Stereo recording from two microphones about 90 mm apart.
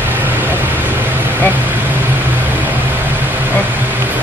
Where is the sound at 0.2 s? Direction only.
20° right (ahead or behind).